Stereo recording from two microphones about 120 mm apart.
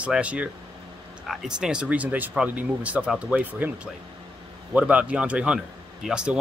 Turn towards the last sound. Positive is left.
turn(degrees=-5)  # may be behind; listen again after turning